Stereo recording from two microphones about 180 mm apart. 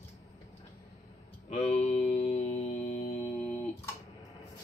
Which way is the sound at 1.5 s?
35° left (ahead or behind).